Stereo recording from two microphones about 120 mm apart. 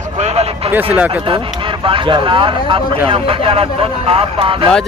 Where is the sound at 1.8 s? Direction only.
45° right (ahead or behind).